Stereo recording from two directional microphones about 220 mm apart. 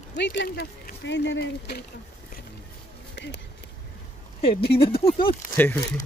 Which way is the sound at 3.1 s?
50° left (ahead or behind).